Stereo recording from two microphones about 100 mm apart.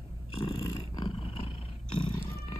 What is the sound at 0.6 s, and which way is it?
Roar, 40° left (ahead or behind).